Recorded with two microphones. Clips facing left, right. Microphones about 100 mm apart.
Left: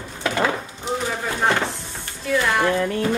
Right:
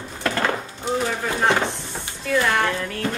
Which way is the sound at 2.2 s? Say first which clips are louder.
Left 1 dB; centre (ahead or behind).